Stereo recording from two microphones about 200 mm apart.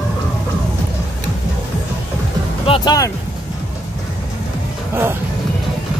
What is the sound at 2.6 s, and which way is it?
Music, 30° left (ahead or behind).